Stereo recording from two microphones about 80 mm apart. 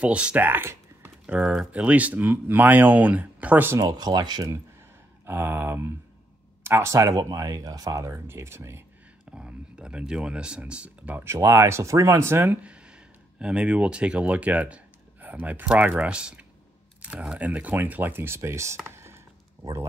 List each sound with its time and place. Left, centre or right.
0.0 s speech: centre
0.5 s a sound: right
1.2 s speech: centre
3.7 s speech: right
4.0 s speech: right
5.2 s speech: right
9.3 s speech: centre
11.2 s speech: right
12.6 s speech: centre; by 18.8 s right
18.9 s a sound: right
19.6 s speech: right